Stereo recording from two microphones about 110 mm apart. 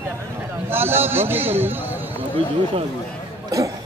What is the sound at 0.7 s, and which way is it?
A man's voice, 20° right (ahead or behind).